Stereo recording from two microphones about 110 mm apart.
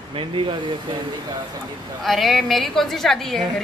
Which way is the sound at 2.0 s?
Centre (ahead or behind).